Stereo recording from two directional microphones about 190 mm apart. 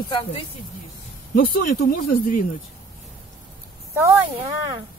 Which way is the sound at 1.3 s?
50° left (ahead or behind).